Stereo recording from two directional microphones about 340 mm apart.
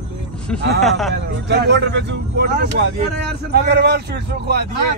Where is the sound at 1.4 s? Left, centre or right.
Right.